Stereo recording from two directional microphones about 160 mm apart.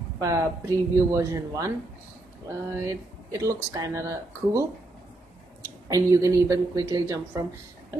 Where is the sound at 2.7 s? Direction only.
20° right (ahead or behind).